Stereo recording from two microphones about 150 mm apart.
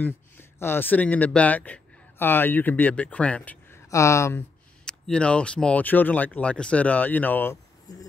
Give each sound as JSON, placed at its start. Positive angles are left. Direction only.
{"t": 0.0, "sound": "speech", "side_deg": 15}
{"t": 4.8, "sound": "speech", "side_deg": 5}
{"t": 7.9, "sound": "speech", "side_deg": 25}